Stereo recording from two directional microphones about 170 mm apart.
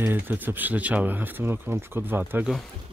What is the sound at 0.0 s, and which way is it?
Speech, 10° right (ahead or behind).